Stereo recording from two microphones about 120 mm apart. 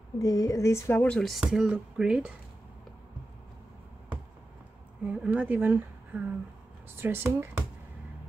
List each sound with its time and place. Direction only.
0.2 s speech: 30° left (ahead or behind)
1.0 s speech: 5° left (ahead or behind)
5.0 s a woman's voice: 10° right (ahead or behind)